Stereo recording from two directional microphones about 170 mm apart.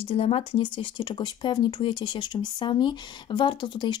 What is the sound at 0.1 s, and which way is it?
Speech, 35° left (ahead or behind).